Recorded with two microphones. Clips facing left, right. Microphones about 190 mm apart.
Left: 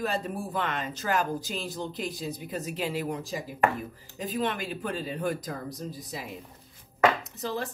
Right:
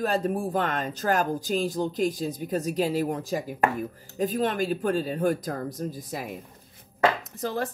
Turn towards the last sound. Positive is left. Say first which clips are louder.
# right 3 dB
turn(degrees=-50)  # may be behind; listen again after turning